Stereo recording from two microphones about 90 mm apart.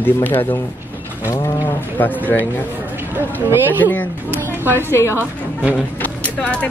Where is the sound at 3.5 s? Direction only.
20° right (ahead or behind).